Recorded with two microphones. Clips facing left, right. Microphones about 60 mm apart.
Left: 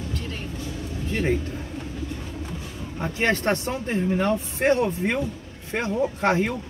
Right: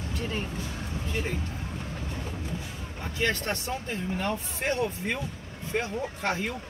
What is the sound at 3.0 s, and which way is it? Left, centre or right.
Speech, left.